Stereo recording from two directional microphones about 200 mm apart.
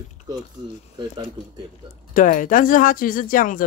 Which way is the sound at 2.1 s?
40° left (ahead or behind).